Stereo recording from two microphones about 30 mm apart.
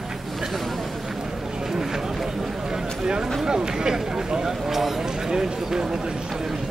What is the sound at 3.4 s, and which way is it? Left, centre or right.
Speech, right.